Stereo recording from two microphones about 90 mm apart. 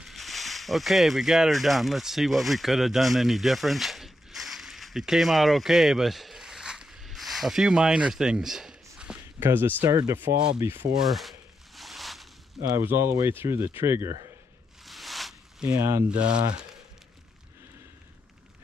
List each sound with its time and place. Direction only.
0.0 s speech: centre (ahead or behind)
9.4 s speech: 25° right (ahead or behind)
9.8 s speech: 45° right (ahead or behind)
10.6 s speech: 25° right (ahead or behind)
11.0 s a sound: centre (ahead or behind)
12.8 s speech: 30° right (ahead or behind)
14.9 s zipper: centre (ahead or behind)
15.7 s speech: 35° right (ahead or behind)
16.1 s speech: 10° right (ahead or behind)